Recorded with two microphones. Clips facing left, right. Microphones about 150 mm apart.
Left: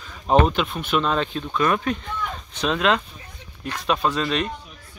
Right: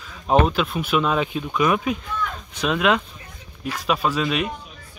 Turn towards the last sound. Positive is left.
turn(degrees=-5)  # may be behind; listen again after turning